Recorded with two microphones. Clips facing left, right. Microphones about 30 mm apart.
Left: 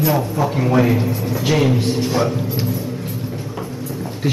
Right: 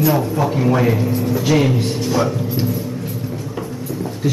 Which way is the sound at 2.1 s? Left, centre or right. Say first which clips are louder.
Right 1 dB; centre.